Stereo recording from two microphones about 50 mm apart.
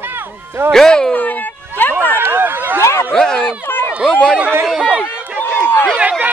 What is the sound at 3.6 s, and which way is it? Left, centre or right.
Run, left.